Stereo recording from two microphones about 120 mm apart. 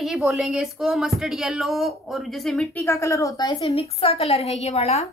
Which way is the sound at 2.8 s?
25° left (ahead or behind).